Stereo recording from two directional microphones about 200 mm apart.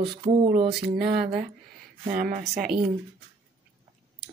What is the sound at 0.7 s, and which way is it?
Speech, 50° right (ahead or behind).